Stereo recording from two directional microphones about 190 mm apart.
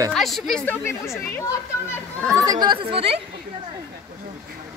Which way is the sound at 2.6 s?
25° right (ahead or behind).